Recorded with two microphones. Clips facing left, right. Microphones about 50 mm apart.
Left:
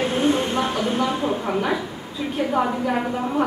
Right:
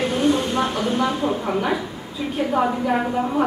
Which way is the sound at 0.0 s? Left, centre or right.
Left.